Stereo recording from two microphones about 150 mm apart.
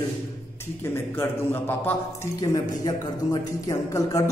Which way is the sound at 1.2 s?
15° left (ahead or behind).